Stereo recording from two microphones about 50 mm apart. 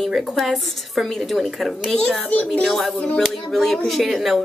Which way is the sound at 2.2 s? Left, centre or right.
Left.